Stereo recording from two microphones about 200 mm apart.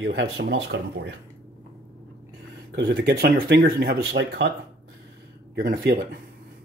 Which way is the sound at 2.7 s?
55° right (ahead or behind).